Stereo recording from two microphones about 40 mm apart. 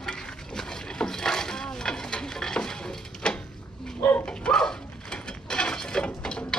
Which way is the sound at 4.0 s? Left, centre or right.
Left.